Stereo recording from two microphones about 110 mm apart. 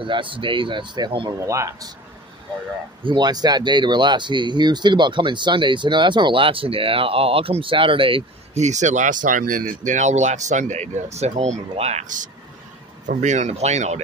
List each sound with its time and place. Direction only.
0.0 s speech: 50° right (ahead or behind)
1.4 s speech: 25° right (ahead or behind)
3.0 s speech: 45° right (ahead or behind)
8.5 s speech: 90° right
13.2 s speech: 90° right